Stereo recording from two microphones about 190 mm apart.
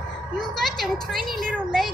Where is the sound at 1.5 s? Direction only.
5° left (ahead or behind).